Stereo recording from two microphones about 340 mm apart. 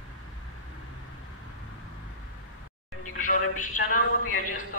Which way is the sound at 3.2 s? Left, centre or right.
Left.